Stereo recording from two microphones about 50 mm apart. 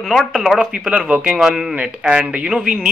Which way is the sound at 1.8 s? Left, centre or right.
Centre.